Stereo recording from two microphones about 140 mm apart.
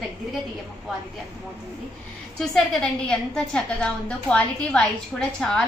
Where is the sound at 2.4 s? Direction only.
Centre (ahead or behind).